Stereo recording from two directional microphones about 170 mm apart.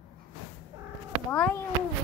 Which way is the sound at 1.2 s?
10° left (ahead or behind).